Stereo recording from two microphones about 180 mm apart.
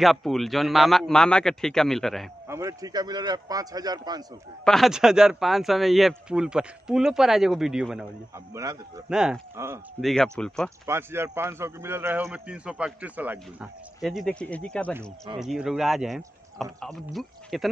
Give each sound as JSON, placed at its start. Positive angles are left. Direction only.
{"t": 0.0, "sound": "speech", "side_deg": 0}
{"t": 2.4, "sound": "a man's voice", "side_deg": -15}
{"t": 4.6, "sound": "speech", "side_deg": 0}
{"t": 9.1, "sound": "speech", "side_deg": -5}
{"t": 10.9, "sound": "a man's voice", "side_deg": -15}